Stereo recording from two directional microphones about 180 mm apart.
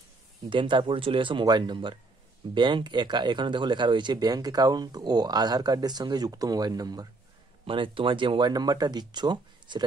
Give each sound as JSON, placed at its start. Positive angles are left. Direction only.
{"t": 0.5, "sound": "speech", "side_deg": -25}